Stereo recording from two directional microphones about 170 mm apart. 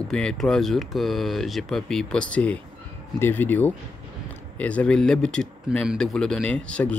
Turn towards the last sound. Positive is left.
turn(degrees=5)  # may be behind; listen again after turning